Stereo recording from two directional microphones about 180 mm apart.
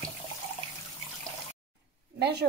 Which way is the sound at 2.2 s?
70° right (ahead or behind).